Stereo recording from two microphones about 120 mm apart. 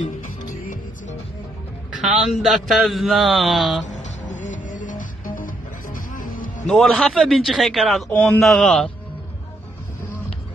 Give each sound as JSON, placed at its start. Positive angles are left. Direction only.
{"t": 0.0, "sound": "music", "side_deg": 90}
{"t": 2.0, "sound": "a man's voice", "side_deg": 0}
{"t": 3.8, "sound": "music", "side_deg": 85}
{"t": 6.7, "sound": "a man's voice", "side_deg": 0}